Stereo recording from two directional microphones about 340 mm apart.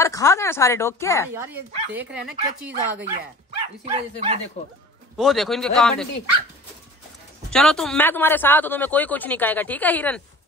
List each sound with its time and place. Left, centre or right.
0.0 s a woman's voice: centre
1.4 s a man's voice: centre
3.8 s speech: centre
5.1 s a man's voice: centre
7.5 s a man's voice: centre